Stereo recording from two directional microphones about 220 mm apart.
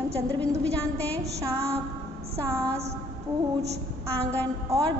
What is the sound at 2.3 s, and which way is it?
Speech, 15° right (ahead or behind).